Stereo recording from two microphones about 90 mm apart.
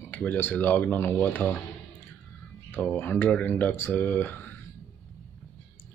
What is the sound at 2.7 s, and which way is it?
Speech, 20° left (ahead or behind).